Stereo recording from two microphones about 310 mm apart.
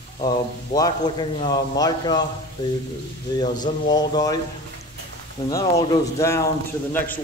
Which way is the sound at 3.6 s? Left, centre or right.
Centre.